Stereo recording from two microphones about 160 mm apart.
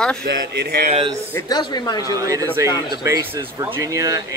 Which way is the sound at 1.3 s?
25° left (ahead or behind).